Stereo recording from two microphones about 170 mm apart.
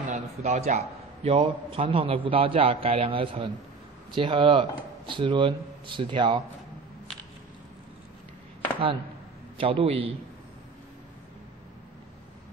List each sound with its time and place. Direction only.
0.1 s a man's voice: 40° right (ahead or behind)
9.6 s a man's voice: 30° right (ahead or behind)